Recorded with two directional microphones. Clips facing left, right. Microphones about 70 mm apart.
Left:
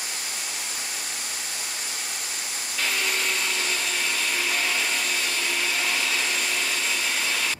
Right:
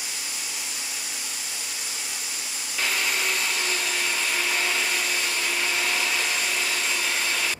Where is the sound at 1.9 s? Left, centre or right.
Left.